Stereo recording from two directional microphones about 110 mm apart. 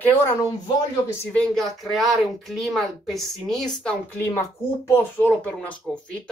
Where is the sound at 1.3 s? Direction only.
5° left (ahead or behind).